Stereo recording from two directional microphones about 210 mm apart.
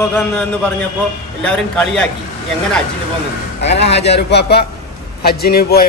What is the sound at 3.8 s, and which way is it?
Speech, 30° left (ahead or behind).